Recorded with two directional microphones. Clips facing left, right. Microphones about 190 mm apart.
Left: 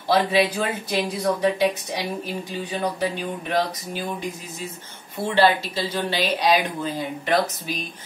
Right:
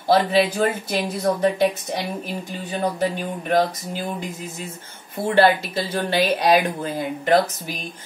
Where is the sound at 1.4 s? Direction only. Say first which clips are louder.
Right 2 dB; 50° right (ahead or behind).